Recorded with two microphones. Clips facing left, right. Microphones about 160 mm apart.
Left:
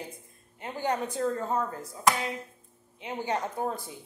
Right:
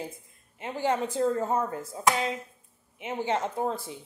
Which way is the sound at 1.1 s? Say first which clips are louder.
Right 3 dB; 25° right (ahead or behind).